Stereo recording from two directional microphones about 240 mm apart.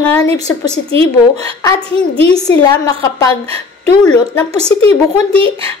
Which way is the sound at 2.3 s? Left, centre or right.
Centre.